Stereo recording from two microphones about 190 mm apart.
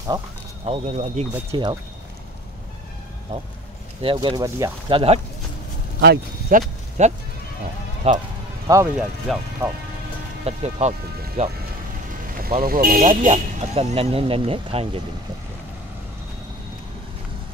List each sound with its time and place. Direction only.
0.7 s speech: 35° right (ahead or behind)
1.5 s speech: 25° right (ahead or behind)
4.0 s speech: 25° right (ahead or behind)
5.9 s speech: 60° right (ahead or behind)
7.0 s speech: 40° right (ahead or behind)
8.7 s speech: 20° right (ahead or behind)
9.3 s speech: centre (ahead or behind)
10.4 s speech: 35° right (ahead or behind)
12.4 s speech: 50° right (ahead or behind)
13.3 s speech: 35° right (ahead or behind)